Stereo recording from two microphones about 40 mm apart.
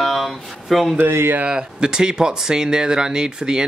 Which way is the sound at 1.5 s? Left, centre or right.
Right.